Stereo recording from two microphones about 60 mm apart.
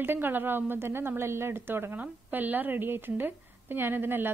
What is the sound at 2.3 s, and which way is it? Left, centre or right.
A woman's voice, right.